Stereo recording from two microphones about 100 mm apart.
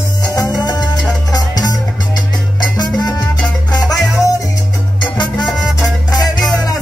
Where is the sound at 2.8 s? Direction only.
40° left (ahead or behind).